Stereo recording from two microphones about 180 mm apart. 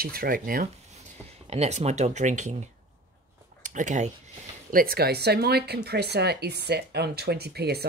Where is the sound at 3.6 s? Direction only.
45° right (ahead or behind).